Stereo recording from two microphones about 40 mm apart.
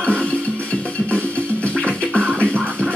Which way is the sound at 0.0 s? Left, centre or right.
Left.